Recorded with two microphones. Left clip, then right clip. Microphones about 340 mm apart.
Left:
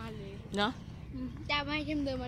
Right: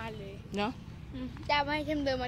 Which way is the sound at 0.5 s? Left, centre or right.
Centre.